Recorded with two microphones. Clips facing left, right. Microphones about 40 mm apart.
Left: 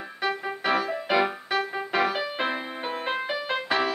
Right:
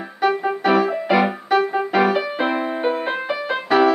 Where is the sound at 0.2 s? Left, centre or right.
Centre.